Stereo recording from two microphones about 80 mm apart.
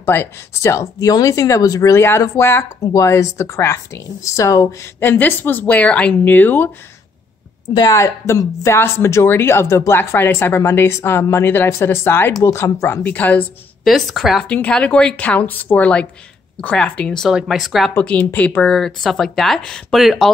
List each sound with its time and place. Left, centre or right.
0.0 s speech: left
5.0 s a woman's voice: left
7.7 s a woman's voice: left; by 13.5 s centre
13.8 s speech: centre
14.5 s speech: centre
17.3 s speech: centre
17.9 s speech: centre
18.7 s speech: centre